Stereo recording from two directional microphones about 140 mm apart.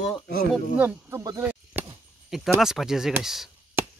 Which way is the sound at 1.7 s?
15° right (ahead or behind).